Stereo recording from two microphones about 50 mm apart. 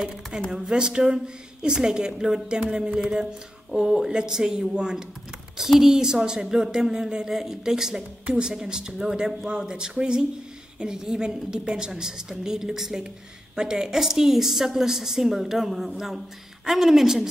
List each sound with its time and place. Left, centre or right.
0.0 s a woman's voice: centre
2.6 s a sound: centre
3.7 s speech: centre